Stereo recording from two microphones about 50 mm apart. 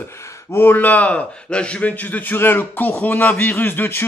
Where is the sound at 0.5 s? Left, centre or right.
Left.